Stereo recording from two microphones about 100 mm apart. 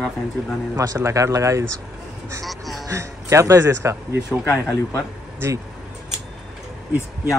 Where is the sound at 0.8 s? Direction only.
35° right (ahead or behind).